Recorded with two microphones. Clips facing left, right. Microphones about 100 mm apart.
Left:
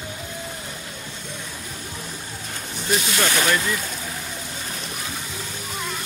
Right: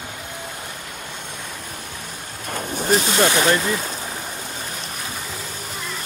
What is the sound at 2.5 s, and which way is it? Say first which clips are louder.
Speech: right 6 dB; 45° right (ahead or behind).